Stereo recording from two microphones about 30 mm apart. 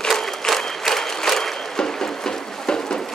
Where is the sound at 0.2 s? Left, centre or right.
Centre.